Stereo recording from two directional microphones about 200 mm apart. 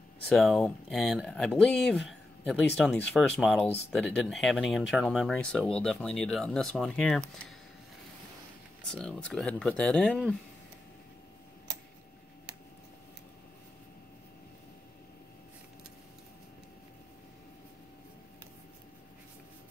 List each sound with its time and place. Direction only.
0.3 s speech: centre (ahead or behind)
3.6 s speech: 30° left (ahead or behind)
3.9 s speech: centre (ahead or behind)
8.9 s speech: 5° left (ahead or behind)